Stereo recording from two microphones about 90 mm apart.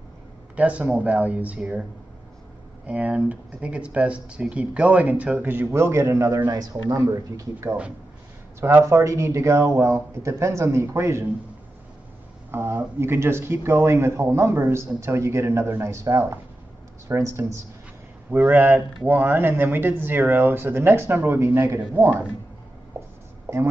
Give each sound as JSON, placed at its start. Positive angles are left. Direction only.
{"t": 0.6, "sound": "speech", "side_deg": -15}
{"t": 2.9, "sound": "speech", "side_deg": -15}
{"t": 6.5, "sound": "speech", "side_deg": -45}
{"t": 12.4, "sound": "speech", "side_deg": -25}
{"t": 18.4, "sound": "speech", "side_deg": -20}